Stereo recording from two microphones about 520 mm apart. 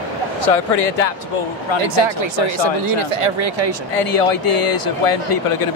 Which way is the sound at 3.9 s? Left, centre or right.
Left.